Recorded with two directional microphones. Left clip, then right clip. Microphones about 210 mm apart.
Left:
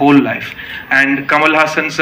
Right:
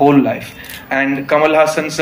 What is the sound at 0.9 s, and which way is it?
A man's voice, 60° right (ahead or behind).